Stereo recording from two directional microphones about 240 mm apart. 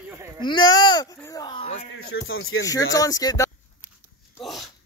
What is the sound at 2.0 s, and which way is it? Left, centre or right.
Speech, left.